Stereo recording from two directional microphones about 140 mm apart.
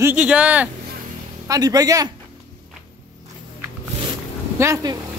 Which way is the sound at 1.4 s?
25° right (ahead or behind).